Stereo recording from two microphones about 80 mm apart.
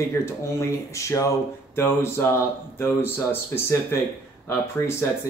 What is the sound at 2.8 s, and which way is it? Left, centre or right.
Speech, left.